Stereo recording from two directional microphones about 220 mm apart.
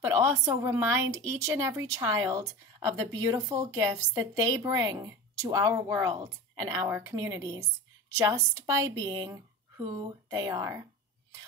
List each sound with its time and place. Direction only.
0.0 s a woman's voice: 15° right (ahead or behind)